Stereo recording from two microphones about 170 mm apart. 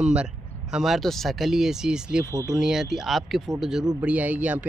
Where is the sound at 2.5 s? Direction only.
5° right (ahead or behind).